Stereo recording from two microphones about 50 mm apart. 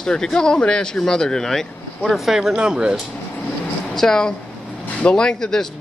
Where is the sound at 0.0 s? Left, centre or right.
Centre.